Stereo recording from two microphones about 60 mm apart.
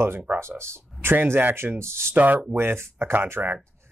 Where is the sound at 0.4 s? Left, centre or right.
Right.